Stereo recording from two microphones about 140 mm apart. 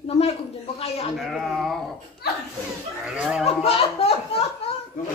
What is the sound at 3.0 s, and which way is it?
Speech, 5° right (ahead or behind).